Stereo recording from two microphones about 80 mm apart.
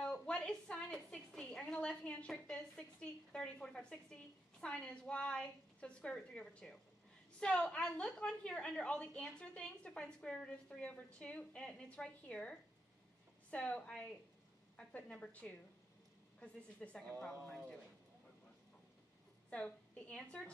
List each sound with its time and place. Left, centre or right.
0.0 s a woman's voice: centre
19.5 s a woman's voice: centre